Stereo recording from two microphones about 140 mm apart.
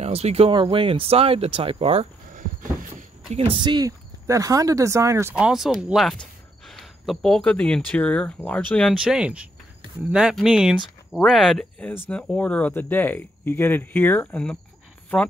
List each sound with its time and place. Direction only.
0.0 s speech: 50° right (ahead or behind)
2.3 s a sound: 70° right (ahead or behind)
3.3 s speech: 40° right (ahead or behind); by 5.3 s 20° right (ahead or behind)
5.4 s speech: 5° right (ahead or behind)
8.9 s speech: 5° right (ahead or behind); by 14.6 s 10° left (ahead or behind)